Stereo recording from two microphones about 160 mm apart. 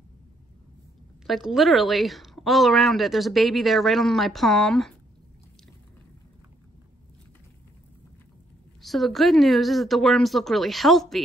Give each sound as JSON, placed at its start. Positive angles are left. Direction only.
{"t": 1.2, "sound": "a woman's voice", "side_deg": 0}
{"t": 8.8, "sound": "a woman's voice", "side_deg": 0}